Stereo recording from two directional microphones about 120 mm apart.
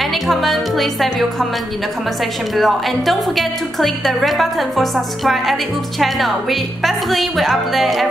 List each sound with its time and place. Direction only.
0.0 s speech: centre (ahead or behind)
2.5 s a woman's voice: centre (ahead or behind)